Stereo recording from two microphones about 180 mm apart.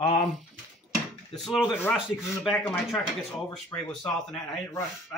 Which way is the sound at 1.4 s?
Centre (ahead or behind).